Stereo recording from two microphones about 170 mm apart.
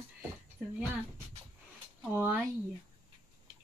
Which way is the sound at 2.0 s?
10° right (ahead or behind).